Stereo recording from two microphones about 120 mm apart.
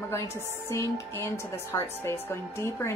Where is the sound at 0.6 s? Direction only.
25° left (ahead or behind).